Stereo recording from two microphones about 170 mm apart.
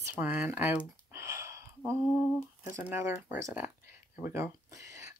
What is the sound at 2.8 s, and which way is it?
Speech, 10° right (ahead or behind).